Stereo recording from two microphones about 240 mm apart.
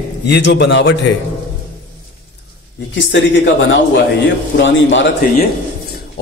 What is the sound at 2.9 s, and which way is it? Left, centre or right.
Speech, left.